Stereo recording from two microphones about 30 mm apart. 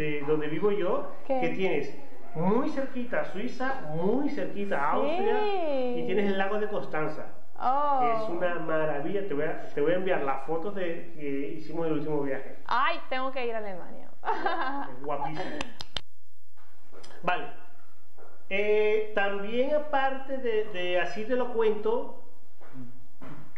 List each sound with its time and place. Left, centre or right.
0.0 s speech: centre
17.2 s speech: centre